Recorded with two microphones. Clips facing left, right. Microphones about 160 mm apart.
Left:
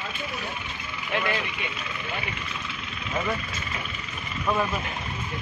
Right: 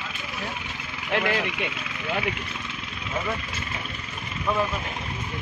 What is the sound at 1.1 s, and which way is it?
Speech, 70° right (ahead or behind).